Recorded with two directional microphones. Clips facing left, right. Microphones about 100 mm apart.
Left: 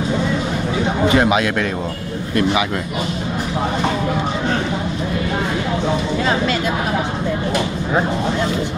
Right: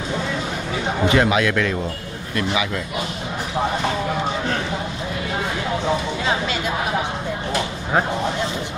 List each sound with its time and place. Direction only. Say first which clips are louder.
1.1 s speech: left 1 dB; 20° left (ahead or behind)